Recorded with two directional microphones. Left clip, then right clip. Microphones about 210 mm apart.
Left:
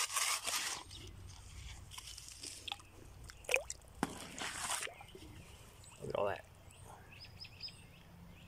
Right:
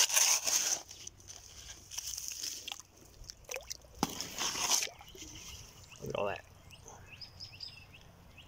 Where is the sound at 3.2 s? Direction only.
5° left (ahead or behind).